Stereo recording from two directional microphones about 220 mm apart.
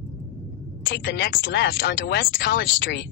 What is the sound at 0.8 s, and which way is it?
Speech, 45° left (ahead or behind).